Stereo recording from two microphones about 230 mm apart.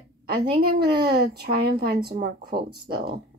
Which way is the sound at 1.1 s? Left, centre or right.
Right.